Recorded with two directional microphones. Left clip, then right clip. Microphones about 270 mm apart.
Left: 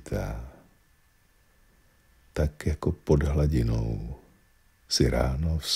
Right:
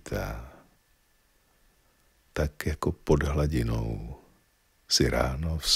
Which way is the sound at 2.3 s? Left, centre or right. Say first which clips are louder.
Even; centre.